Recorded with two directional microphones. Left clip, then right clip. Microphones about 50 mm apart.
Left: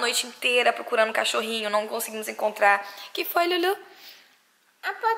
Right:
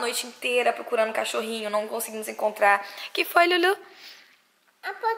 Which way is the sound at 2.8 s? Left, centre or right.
Right.